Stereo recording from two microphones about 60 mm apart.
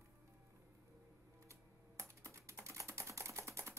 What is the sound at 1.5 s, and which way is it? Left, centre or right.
Typing, right.